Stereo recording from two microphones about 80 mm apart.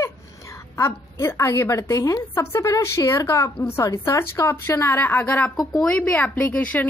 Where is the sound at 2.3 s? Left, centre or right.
Left.